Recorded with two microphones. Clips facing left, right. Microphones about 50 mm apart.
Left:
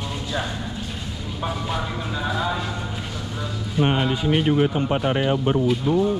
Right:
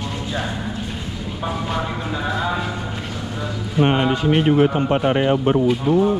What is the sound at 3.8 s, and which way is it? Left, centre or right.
A man's voice, right.